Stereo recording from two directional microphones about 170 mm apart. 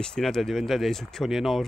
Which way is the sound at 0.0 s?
5° left (ahead or behind).